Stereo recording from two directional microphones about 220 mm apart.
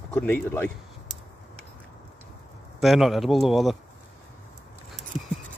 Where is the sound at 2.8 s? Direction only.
Centre (ahead or behind).